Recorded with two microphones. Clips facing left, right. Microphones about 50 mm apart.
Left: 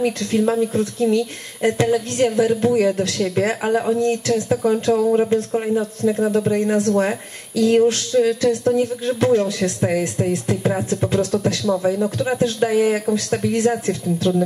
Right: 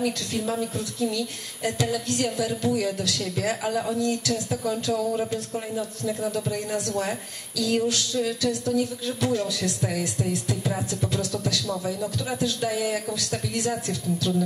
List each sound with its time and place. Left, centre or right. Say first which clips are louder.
0.0 s a woman's voice: left 8 dB; left